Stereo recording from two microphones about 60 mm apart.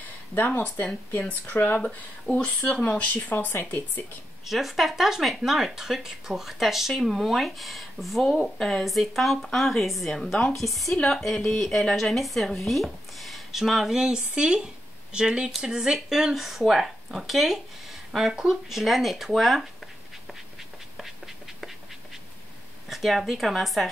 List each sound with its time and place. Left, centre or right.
0.5 s speech: left
3.3 s speech: left
4.5 s speech: centre
22.8 s speech: centre